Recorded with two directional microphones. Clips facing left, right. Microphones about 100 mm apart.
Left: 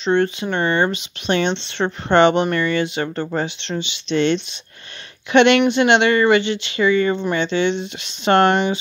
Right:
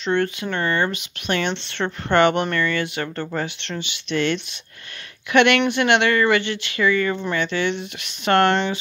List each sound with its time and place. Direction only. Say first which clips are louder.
0.0 s speech: left 4 dB; 20° left (ahead or behind)